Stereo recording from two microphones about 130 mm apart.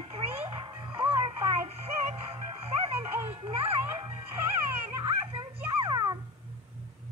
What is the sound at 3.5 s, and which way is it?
Music, 45° right (ahead or behind).